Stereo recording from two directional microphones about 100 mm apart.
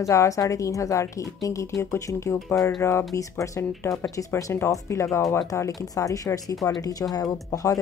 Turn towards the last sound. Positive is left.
turn(degrees=35)  # may be behind; listen again after turning